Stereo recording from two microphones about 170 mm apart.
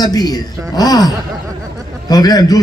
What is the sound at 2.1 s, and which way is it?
Speech, 20° left (ahead or behind).